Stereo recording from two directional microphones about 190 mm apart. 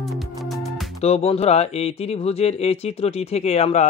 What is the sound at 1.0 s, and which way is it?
Speech, 30° left (ahead or behind).